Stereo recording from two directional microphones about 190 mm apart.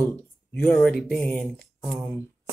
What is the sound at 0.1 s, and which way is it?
Speech, 5° left (ahead or behind).